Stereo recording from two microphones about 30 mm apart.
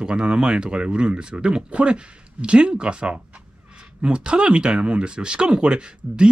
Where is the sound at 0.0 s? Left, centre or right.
Right.